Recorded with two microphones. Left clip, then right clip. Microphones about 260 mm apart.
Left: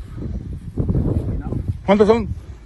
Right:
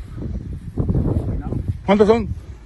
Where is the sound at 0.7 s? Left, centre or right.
Centre.